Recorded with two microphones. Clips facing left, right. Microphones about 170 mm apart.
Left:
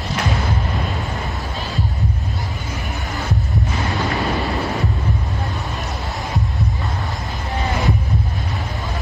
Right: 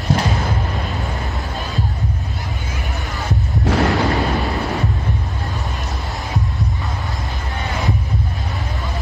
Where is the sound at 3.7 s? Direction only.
75° right (ahead or behind).